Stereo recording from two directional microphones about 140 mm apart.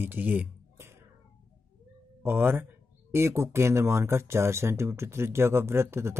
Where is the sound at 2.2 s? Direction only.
15° right (ahead or behind).